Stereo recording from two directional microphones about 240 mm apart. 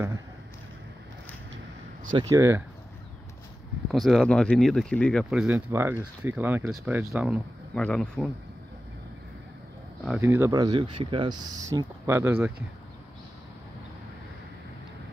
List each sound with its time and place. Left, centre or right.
2.1 s speech: centre
3.9 s speech: centre
10.2 s speech: centre